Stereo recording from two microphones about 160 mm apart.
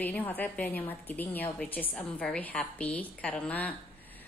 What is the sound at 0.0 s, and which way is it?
A woman's voice, 10° left (ahead or behind).